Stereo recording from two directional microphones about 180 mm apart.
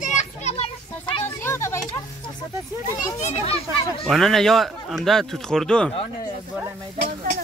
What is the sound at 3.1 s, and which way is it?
Speech, 35° left (ahead or behind).